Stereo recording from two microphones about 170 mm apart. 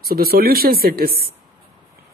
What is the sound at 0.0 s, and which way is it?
Speech, 65° right (ahead or behind).